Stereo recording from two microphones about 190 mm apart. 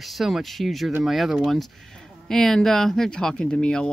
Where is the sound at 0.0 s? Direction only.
Centre (ahead or behind).